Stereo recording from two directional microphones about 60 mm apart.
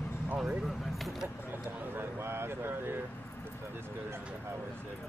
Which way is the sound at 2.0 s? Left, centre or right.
Right.